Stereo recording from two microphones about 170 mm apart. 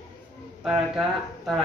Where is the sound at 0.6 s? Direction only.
5° right (ahead or behind).